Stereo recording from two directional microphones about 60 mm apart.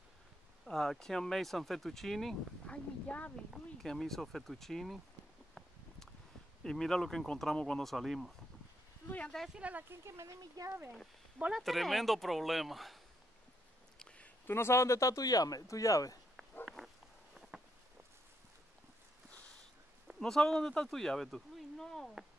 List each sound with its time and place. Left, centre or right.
0.7 s speech: centre
2.6 s speech: left
3.3 s speech: centre
6.6 s speech: centre
9.6 s speech: right
9.8 s speech: right
10.6 s speech: right
11.5 s speech: centre
13.9 s a sound: centre
14.5 s speech: left
16.6 s a sound: centre
20.2 s speech: centre